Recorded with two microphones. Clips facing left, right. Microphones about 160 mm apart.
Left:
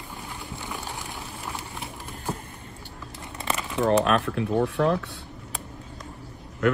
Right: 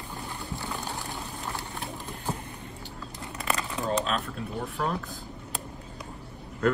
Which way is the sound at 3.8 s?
70° left (ahead or behind).